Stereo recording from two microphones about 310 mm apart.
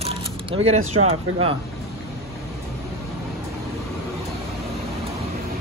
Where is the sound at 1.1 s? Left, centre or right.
Centre.